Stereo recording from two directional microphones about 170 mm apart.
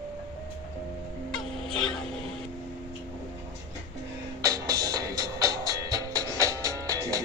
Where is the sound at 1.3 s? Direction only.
5° left (ahead or behind).